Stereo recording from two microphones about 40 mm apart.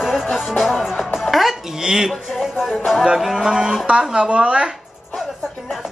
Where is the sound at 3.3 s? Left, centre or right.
Centre.